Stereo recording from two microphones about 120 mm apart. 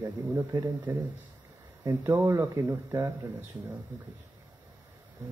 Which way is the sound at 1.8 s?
30° right (ahead or behind).